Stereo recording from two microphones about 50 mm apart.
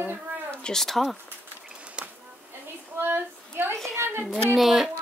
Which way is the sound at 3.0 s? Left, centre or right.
Right.